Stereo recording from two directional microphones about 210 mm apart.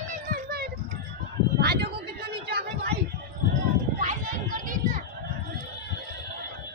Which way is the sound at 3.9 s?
40° right (ahead or behind).